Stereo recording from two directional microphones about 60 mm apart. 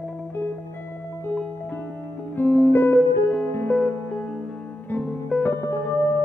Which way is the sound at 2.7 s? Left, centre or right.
Left.